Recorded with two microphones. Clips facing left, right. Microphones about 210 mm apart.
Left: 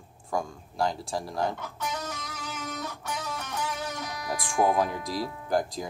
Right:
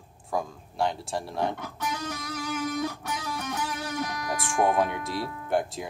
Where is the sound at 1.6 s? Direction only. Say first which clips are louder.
Right 1 dB; 55° right (ahead or behind).